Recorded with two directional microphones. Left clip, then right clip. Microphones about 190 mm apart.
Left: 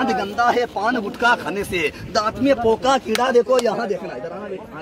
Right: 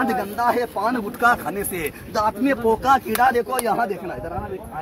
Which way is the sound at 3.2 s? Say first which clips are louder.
Left 3 dB; 40° right (ahead or behind).